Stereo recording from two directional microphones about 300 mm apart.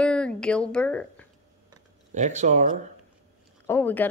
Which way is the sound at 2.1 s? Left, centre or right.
Right.